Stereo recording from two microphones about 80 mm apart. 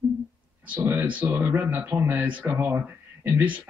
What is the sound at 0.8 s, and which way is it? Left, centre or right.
Speech, right.